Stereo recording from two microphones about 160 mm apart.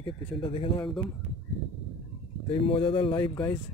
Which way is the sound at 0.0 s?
30° left (ahead or behind).